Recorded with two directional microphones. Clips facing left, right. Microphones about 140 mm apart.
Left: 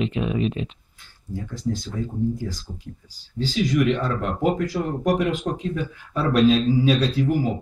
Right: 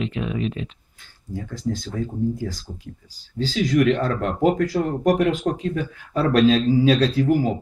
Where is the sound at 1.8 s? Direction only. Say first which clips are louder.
Right 1 dB; 45° right (ahead or behind).